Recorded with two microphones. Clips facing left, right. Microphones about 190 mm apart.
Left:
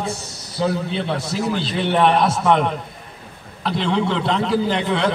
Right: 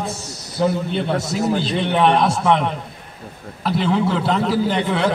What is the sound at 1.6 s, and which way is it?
A man's voice, centre (ahead or behind).